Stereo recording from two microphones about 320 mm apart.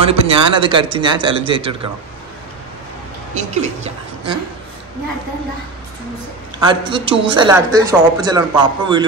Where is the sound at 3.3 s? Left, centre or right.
Right.